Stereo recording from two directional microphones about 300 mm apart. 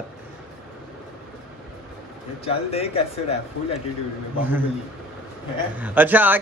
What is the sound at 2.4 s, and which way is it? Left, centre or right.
Speech, centre.